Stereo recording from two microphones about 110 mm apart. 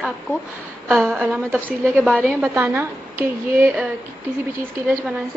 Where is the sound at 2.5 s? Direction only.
20° right (ahead or behind).